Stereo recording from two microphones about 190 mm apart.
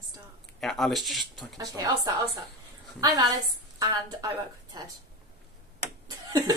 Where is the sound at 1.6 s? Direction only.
20° right (ahead or behind).